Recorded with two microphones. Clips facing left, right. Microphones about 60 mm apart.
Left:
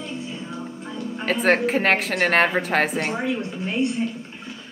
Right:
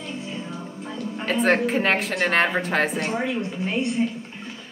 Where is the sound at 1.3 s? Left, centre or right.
Centre.